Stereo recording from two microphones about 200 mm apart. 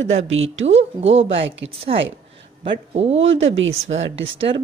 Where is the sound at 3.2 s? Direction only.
70° right (ahead or behind).